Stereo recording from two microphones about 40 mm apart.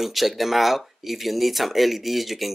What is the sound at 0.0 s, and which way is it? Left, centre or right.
Speech, centre.